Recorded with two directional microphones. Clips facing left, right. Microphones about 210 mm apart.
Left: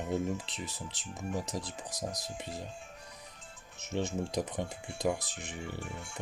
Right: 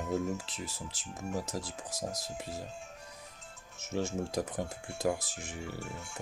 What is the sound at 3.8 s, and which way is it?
Speech, 5° right (ahead or behind).